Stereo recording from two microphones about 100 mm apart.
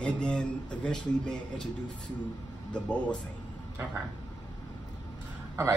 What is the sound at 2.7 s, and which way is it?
Speech, 10° left (ahead or behind).